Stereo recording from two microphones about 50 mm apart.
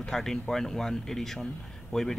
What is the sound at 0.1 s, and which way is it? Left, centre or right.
Speech, centre.